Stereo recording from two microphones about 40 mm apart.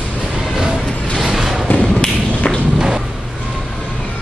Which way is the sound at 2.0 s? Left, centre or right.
Left.